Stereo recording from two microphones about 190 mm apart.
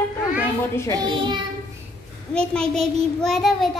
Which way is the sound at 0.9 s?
25° right (ahead or behind).